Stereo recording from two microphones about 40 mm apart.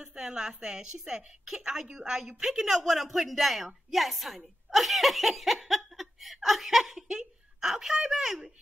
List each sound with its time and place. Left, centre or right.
0.1 s a woman's voice: centre